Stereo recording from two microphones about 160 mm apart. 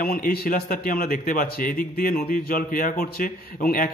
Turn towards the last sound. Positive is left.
turn(degrees=65)  # may be behind; listen again after turning